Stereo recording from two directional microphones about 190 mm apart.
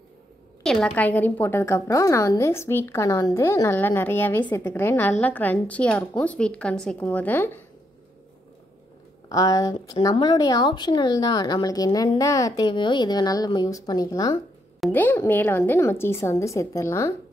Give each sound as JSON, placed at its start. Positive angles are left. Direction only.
{"t": 0.7, "sound": "a woman's voice", "side_deg": 5}
{"t": 9.3, "sound": "a woman's voice", "side_deg": 20}